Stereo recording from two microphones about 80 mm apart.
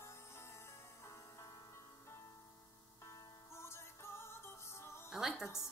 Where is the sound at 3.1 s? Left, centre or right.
Left.